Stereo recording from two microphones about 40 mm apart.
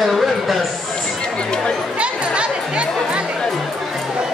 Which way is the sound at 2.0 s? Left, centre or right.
Right.